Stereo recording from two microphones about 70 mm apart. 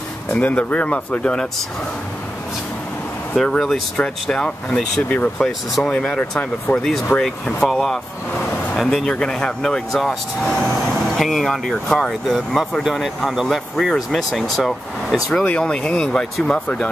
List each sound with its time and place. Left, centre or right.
0.3 s speech: left
3.4 s speech: centre
15.4 s speech: centre